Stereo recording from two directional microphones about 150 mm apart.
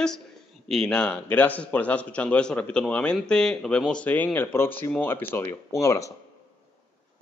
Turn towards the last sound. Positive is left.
turn(degrees=20)  # may be behind; listen again after turning